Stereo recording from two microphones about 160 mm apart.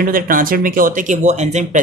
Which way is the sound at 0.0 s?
60° right (ahead or behind).